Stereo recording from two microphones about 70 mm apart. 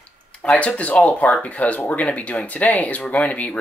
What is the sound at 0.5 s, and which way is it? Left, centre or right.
Speech, centre.